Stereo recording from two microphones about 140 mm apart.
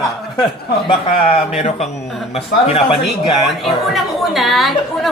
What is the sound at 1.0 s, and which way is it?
Speech, 70° left (ahead or behind).